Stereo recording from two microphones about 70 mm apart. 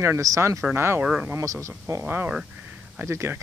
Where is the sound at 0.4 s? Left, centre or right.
Right.